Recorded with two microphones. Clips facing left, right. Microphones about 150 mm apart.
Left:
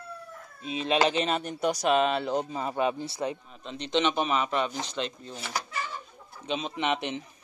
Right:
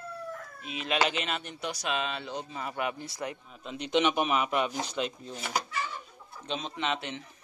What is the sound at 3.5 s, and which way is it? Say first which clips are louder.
Speech: even; 5° right (ahead or behind).